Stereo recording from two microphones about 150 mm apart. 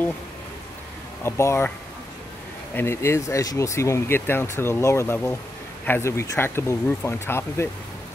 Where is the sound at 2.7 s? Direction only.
15° left (ahead or behind).